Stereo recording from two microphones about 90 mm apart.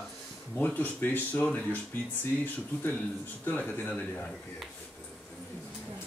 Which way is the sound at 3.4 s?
20° left (ahead or behind).